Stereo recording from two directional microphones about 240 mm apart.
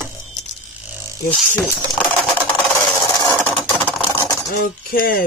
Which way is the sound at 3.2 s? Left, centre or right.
Centre.